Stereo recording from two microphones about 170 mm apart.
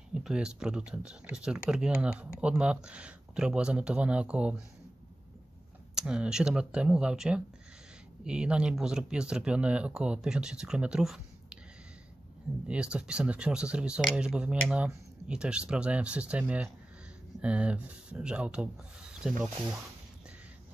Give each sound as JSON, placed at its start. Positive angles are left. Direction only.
{"t": 0.1, "sound": "speech", "side_deg": -5}
{"t": 5.9, "sound": "speech", "side_deg": -5}
{"t": 12.6, "sound": "speech", "side_deg": -5}